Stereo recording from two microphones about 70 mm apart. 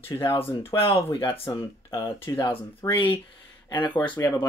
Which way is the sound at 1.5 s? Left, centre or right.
Left.